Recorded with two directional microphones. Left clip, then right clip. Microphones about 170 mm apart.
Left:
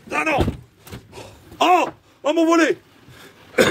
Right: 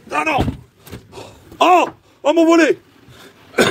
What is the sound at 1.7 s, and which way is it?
Speech, 5° right (ahead or behind).